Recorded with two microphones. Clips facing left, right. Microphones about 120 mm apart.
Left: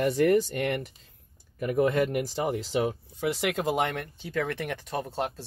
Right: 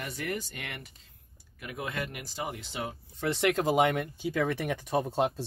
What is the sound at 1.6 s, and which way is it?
Speech, 40° left (ahead or behind).